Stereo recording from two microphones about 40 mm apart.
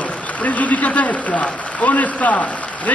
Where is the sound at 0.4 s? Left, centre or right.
Left.